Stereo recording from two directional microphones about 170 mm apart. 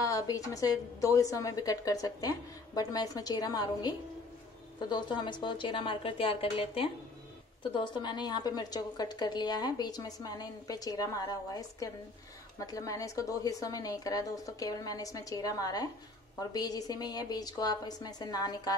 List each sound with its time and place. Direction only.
0.0 s a woman's voice: 20° left (ahead or behind)